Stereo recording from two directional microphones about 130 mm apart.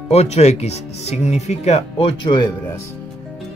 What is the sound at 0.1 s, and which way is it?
Speech, 55° left (ahead or behind).